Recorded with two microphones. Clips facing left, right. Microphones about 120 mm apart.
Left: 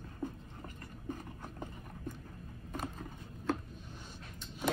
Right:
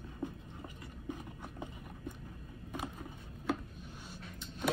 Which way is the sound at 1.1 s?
10° right (ahead or behind).